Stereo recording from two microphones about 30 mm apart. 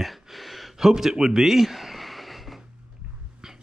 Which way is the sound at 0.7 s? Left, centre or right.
Centre.